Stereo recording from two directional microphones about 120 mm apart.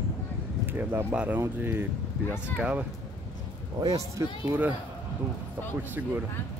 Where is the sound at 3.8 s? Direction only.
30° right (ahead or behind).